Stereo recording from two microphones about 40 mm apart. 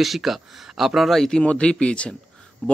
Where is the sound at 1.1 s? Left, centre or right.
Centre.